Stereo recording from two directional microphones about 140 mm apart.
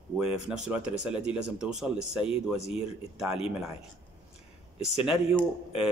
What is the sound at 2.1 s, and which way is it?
Speech, 40° left (ahead or behind).